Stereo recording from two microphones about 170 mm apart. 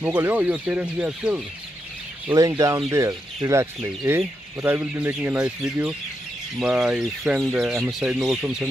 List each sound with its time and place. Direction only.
0.0 s speech: 10° right (ahead or behind)
2.3 s speech: 20° right (ahead or behind); by 8.6 s 5° right (ahead or behind)